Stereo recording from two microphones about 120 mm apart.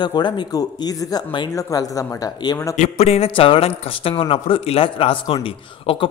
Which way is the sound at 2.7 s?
65° left (ahead or behind).